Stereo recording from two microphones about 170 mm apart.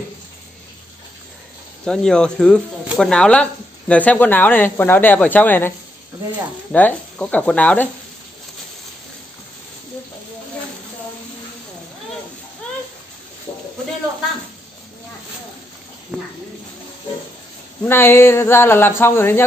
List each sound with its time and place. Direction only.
1.9 s speech: 5° left (ahead or behind)
6.7 s speech: 10° left (ahead or behind)
17.8 s speech: 15° left (ahead or behind)